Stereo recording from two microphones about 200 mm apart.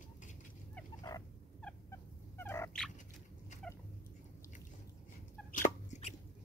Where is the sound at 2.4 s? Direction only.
10° left (ahead or behind).